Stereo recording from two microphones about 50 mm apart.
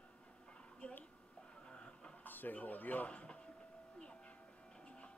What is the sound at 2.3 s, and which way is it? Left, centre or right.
Speech, left.